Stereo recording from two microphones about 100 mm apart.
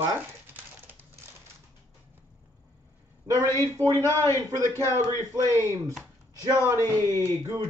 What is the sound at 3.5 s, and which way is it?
A man's voice, 30° left (ahead or behind).